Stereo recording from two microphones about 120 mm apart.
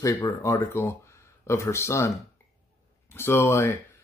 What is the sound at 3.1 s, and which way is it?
Speech, 20° left (ahead or behind).